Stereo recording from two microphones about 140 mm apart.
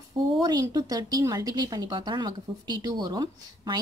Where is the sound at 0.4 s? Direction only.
25° right (ahead or behind).